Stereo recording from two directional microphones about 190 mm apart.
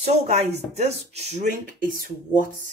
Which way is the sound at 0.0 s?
35° right (ahead or behind).